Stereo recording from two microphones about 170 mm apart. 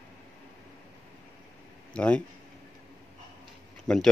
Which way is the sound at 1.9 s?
5° left (ahead or behind).